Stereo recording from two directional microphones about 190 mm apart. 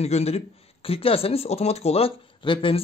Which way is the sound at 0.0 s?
35° left (ahead or behind).